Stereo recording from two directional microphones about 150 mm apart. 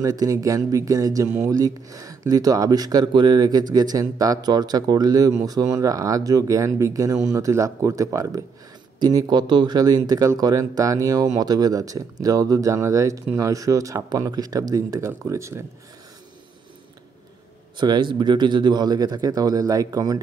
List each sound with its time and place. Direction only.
0.0 s speech: 25° right (ahead or behind)
17.7 s speech: 30° right (ahead or behind)